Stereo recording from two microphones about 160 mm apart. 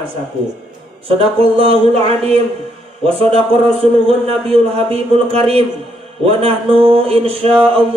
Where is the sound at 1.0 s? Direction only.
35° right (ahead or behind).